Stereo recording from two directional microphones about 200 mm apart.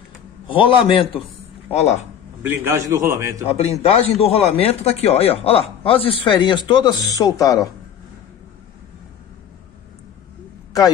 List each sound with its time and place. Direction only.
0.5 s speech: 25° left (ahead or behind)
2.4 s a man's voice: 10° right (ahead or behind)
3.4 s speech: 30° left (ahead or behind)